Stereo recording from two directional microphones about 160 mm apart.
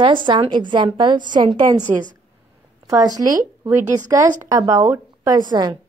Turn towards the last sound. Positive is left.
turn(degrees=-30)  # may be behind; listen again after turning